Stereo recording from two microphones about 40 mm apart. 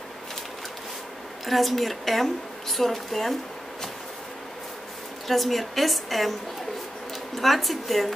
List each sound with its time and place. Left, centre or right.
1.4 s a woman's voice: centre
5.3 s a woman's voice: centre
7.3 s a woman's voice: centre